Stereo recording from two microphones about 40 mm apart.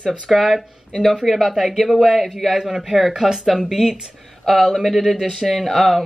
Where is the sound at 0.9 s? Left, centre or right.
Centre.